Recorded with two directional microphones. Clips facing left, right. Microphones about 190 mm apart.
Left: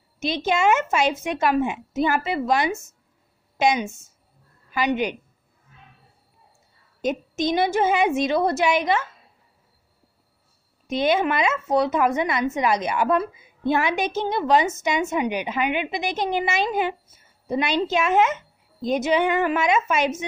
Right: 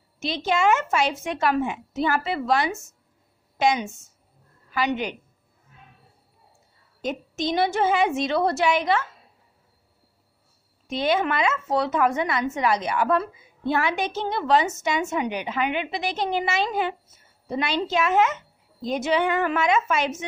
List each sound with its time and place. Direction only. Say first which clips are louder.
0.3 s a woman's voice: left 1 dB; 20° left (ahead or behind)
7.0 s a woman's voice: left 4 dB; 15° left (ahead or behind)
10.9 s a woman's voice: left 2 dB; 20° left (ahead or behind)